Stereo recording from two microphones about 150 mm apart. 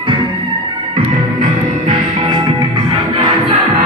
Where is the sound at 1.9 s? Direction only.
30° right (ahead or behind).